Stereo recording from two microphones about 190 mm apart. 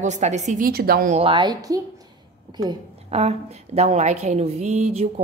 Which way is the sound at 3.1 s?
35° right (ahead or behind).